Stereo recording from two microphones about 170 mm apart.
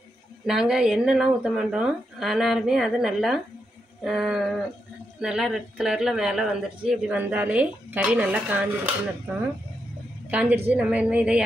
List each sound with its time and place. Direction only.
0.5 s speech: 5° right (ahead or behind)
10.3 s speech: 10° right (ahead or behind)